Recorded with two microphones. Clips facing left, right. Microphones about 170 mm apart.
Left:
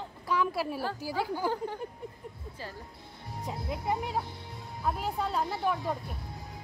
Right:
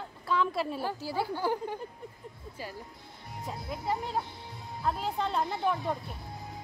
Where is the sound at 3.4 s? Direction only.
20° left (ahead or behind); by 6.0 s 5° left (ahead or behind).